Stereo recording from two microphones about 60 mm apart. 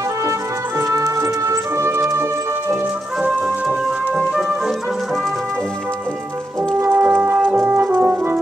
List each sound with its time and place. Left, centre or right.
0.7 s music: right
3.2 s music: centre
6.8 s brass instrument: right